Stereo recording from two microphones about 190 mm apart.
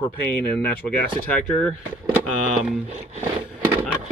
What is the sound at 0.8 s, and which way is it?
Speech, 5° left (ahead or behind).